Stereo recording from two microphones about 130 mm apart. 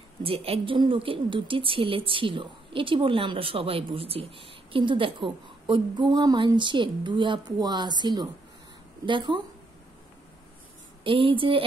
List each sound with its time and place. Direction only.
0.2 s a woman's voice: 45° right (ahead or behind)
11.1 s a woman's voice: 40° right (ahead or behind)